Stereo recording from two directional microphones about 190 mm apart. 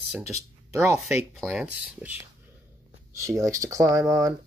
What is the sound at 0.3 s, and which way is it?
Speech, 15° right (ahead or behind).